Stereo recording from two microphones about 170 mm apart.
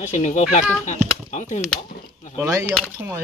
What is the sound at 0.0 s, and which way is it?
Speech, 45° left (ahead or behind).